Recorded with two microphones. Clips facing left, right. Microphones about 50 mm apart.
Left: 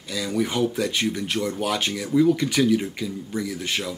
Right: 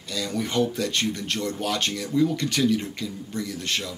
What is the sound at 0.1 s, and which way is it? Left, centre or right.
Speech, centre.